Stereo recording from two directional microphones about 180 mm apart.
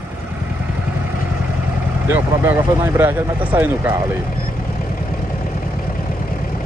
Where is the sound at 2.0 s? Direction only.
10° right (ahead or behind).